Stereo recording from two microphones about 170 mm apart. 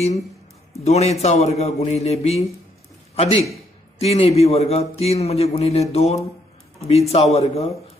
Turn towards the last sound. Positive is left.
turn(degrees=35)  # may be behind; listen again after turning